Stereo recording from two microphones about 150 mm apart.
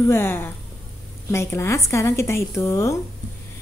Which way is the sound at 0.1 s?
15° left (ahead or behind).